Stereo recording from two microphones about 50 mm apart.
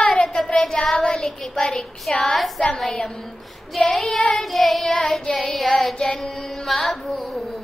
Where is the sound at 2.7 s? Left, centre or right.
Centre.